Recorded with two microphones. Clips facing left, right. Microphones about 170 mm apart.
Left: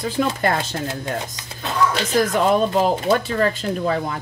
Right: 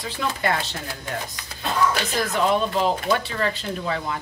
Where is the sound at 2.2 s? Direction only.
45° left (ahead or behind).